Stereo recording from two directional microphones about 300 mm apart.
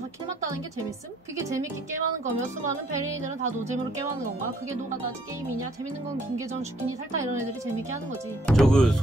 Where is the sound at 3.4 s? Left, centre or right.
Right.